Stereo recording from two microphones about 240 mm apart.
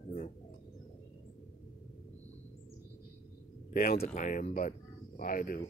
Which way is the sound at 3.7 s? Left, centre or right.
Left.